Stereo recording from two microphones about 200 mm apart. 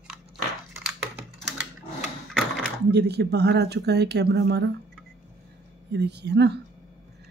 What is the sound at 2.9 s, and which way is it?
Speech, 55° right (ahead or behind).